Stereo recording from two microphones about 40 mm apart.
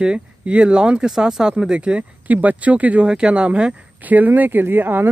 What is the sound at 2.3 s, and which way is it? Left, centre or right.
Speech, right.